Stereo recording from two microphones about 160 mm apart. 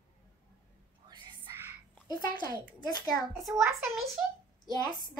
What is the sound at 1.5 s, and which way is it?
Whispering, 20° right (ahead or behind).